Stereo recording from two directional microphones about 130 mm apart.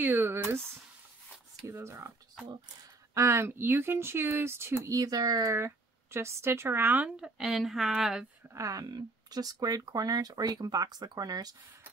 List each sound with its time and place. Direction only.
0.0 s speech: 15° right (ahead or behind)
1.7 s speech: 20° right (ahead or behind)
3.2 s speech: 20° right (ahead or behind); by 8.3 s 5° right (ahead or behind)
8.5 s speech: 25° right (ahead or behind)